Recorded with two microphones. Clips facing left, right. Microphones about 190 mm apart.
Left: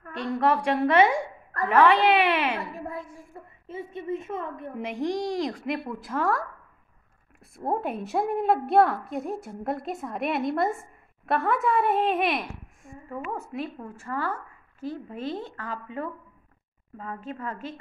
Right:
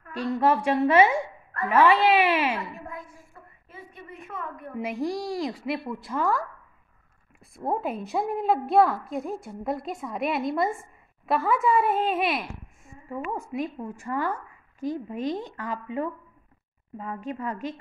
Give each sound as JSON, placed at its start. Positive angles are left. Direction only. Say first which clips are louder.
{"t": 0.2, "sound": "a woman's voice", "louder": "right 1 dB", "side_deg": -5}
{"t": 2.9, "sound": "a sound", "louder": "left 4 dB", "side_deg": 25}
{"t": 4.7, "sound": "a woman's voice", "louder": "even", "side_deg": -5}
{"t": 13.3, "sound": "a woman's voice", "louder": "right 3 dB", "side_deg": -15}